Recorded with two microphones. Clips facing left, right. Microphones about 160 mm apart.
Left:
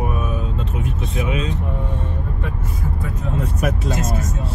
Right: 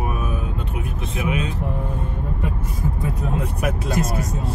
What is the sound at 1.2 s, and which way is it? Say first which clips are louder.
Speech: even; 30° left (ahead or behind).